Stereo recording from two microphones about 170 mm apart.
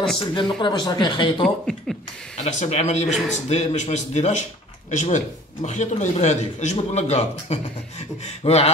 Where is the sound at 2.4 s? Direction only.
45° left (ahead or behind).